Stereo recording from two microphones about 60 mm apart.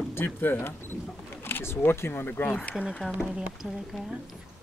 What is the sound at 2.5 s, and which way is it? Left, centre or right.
Speech, left.